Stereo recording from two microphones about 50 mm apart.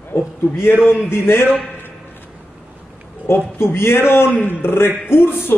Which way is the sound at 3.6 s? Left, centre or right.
Left.